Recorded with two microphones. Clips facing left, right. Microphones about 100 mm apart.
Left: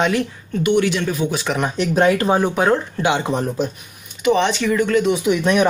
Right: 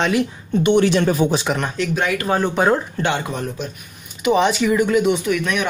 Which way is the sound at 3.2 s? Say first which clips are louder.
Left 5 dB; 30° left (ahead or behind).